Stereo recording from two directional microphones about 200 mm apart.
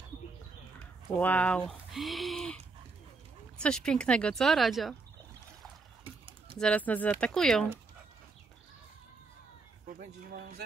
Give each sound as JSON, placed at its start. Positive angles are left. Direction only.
{"t": 1.1, "sound": "speech", "side_deg": 10}
{"t": 6.6, "sound": "speech", "side_deg": 5}
{"t": 9.8, "sound": "speech", "side_deg": -50}